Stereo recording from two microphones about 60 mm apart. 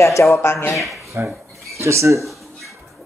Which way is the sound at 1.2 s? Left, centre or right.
Right.